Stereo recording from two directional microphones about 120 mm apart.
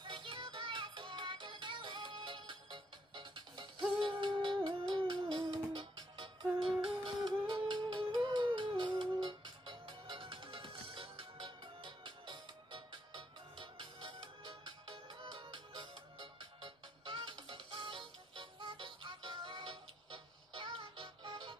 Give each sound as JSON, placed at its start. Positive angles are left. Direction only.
{"t": 0.0, "sound": "music", "side_deg": -45}